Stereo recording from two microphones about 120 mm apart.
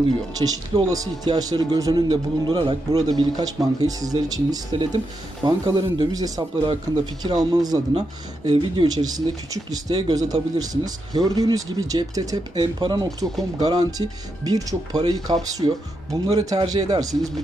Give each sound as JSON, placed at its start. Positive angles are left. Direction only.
{"t": 0.4, "sound": "speech", "side_deg": -40}
{"t": 0.8, "sound": "speech", "side_deg": -30}
{"t": 2.0, "sound": "speech", "side_deg": -45}
{"t": 2.9, "sound": "speech", "side_deg": -35}
{"t": 8.5, "sound": "speech", "side_deg": -45}
{"t": 16.1, "sound": "speech", "side_deg": -30}